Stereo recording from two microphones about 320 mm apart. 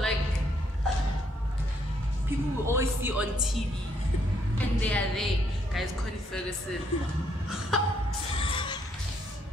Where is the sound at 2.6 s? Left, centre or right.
Centre.